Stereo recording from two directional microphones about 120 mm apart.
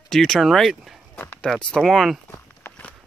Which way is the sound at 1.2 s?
20° left (ahead or behind).